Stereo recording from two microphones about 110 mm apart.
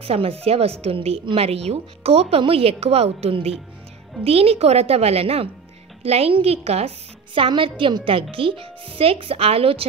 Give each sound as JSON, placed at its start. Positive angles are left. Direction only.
{"t": 0.0, "sound": "a woman's voice", "side_deg": -60}
{"t": 7.3, "sound": "a woman's voice", "side_deg": -50}